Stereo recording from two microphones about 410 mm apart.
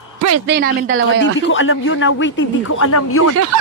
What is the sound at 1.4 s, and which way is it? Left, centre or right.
Speech, left.